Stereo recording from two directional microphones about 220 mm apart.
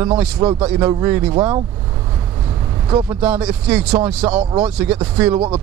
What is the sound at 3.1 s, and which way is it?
Speech, 5° right (ahead or behind).